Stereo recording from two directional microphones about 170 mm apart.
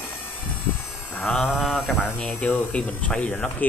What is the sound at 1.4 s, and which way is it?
Speech, centre (ahead or behind).